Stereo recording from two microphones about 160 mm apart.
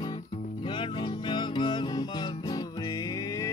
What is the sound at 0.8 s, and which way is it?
Music, 30° left (ahead or behind).